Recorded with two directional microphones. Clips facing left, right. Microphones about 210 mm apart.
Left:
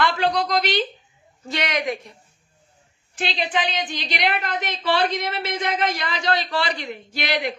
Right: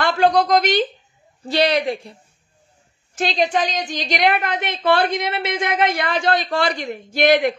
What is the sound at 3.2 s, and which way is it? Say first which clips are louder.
A woman's voice: right 5 dB; 45° right (ahead or behind).